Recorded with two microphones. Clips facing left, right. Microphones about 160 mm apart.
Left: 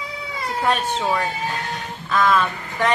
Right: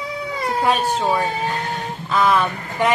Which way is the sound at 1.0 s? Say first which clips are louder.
Right 3 dB; 15° right (ahead or behind).